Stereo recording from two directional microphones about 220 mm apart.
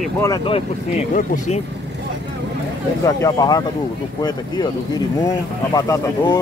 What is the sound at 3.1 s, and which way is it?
Speech, 15° left (ahead or behind).